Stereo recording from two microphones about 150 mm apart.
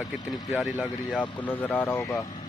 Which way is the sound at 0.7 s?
10° left (ahead or behind).